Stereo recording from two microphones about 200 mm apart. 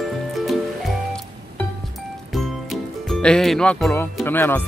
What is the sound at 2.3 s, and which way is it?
Speech, centre (ahead or behind).